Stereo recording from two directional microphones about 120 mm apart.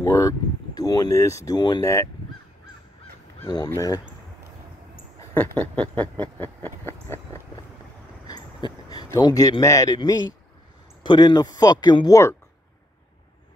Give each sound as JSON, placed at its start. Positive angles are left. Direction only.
{"t": 0.0, "sound": "speech", "side_deg": 25}
{"t": 3.4, "sound": "speech", "side_deg": 30}
{"t": 5.3, "sound": "a sound", "side_deg": 15}
{"t": 6.9, "sound": "speech", "side_deg": 20}
{"t": 8.3, "sound": "a sound", "side_deg": 35}
{"t": 11.0, "sound": "speech", "side_deg": 40}